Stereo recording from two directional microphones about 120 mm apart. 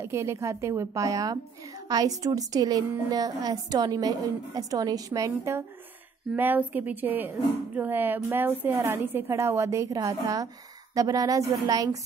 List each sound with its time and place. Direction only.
0.0 s a woman's voice: 25° right (ahead or behind)
6.3 s a woman's voice: 15° right (ahead or behind); by 12.0 s 30° right (ahead or behind)